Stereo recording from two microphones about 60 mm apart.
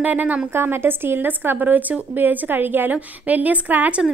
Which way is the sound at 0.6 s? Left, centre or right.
Right.